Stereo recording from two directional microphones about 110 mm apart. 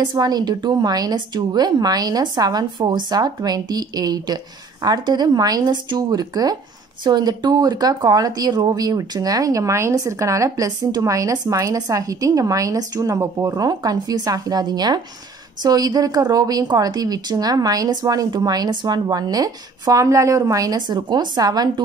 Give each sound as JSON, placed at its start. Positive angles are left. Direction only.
{"t": 0.0, "sound": "speech", "side_deg": -40}